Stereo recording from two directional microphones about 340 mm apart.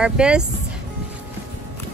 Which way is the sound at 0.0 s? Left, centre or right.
Centre.